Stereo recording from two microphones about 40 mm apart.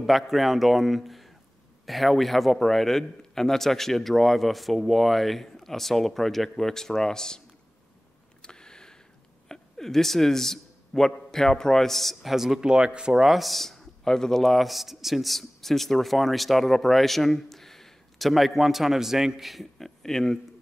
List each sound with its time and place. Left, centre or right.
0.0 s a man's voice: centre
8.4 s a sound: centre
9.5 s a man's voice: centre
12.6 s speech: right
13.2 s a man's voice: centre